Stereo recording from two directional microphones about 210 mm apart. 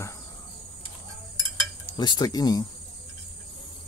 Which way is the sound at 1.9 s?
20° left (ahead or behind).